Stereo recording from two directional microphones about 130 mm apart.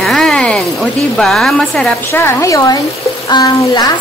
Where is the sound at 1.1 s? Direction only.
5° left (ahead or behind).